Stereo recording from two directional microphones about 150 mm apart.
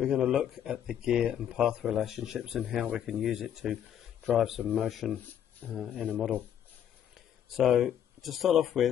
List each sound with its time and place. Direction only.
0.0 s speech: 5° right (ahead or behind)
7.4 s speech: centre (ahead or behind)